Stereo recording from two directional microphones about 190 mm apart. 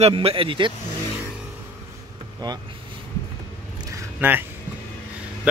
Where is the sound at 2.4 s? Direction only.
20° right (ahead or behind).